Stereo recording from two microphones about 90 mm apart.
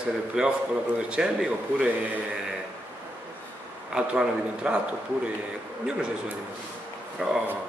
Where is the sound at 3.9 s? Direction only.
10° right (ahead or behind).